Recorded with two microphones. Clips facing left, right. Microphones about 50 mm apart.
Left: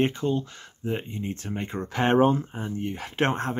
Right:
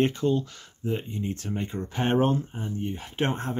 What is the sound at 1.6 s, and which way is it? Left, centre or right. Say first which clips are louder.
Speech: left 4 dB; left.